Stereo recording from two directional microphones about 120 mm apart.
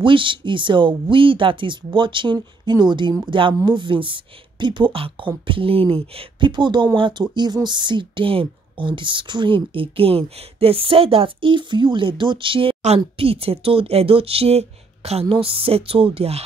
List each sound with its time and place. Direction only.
0.0 s speech: 45° right (ahead or behind)